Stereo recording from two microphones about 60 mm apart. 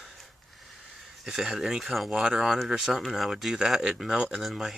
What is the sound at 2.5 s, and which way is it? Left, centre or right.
Speech, centre.